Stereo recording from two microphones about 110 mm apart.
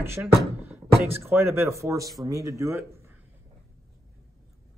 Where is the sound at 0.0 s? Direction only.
20° right (ahead or behind).